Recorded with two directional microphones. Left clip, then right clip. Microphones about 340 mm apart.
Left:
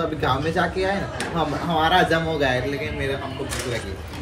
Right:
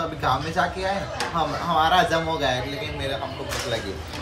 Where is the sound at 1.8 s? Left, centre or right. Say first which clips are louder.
Left 3 dB; right.